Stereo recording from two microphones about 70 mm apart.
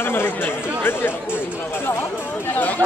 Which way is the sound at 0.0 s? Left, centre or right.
Left.